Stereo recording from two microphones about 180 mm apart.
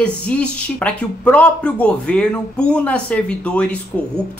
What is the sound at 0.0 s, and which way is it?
Speech, 5° left (ahead or behind).